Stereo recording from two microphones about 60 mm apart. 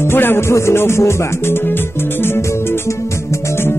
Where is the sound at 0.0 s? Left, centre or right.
Left.